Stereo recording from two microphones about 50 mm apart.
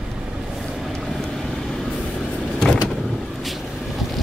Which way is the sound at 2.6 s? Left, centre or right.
Centre.